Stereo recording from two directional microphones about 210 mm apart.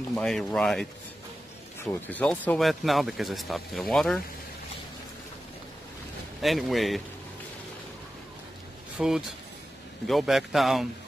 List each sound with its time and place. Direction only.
0.1 s speech: 5° left (ahead or behind)
1.9 s speech: 5° left (ahead or behind)
6.4 s speech: centre (ahead or behind)
8.9 s speech: centre (ahead or behind)